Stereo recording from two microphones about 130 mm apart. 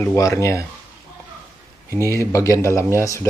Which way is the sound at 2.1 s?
25° left (ahead or behind).